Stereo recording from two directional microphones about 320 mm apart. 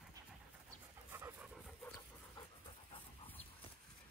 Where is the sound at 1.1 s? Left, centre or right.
Centre.